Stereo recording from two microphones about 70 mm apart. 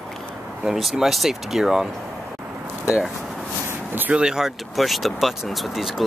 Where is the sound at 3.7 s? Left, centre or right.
Right.